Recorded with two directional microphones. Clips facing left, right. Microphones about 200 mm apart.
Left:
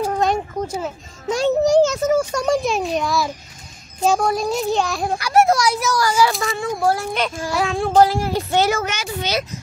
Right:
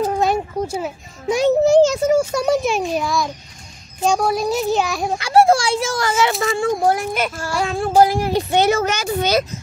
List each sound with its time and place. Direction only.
0.2 s a sound: 10° right (ahead or behind)
1.7 s a child's voice: 25° right (ahead or behind)
2.0 s a child's voice: 10° right (ahead or behind)
5.2 s a child's voice: 30° right (ahead or behind)
7.5 s a child's voice: centre (ahead or behind)
8.0 s speech: 15° right (ahead or behind)
8.8 s speech: 40° right (ahead or behind)